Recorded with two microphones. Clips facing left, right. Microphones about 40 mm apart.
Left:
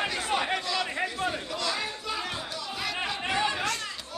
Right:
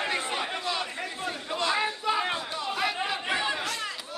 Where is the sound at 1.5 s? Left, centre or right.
Right; by 3.7 s centre.